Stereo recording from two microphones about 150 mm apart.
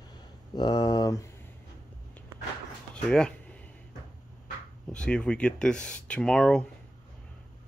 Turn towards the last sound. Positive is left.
turn(degrees=5)  # may be behind; listen again after turning